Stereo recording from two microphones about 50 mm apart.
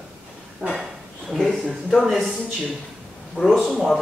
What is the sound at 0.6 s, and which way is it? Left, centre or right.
Speech, right.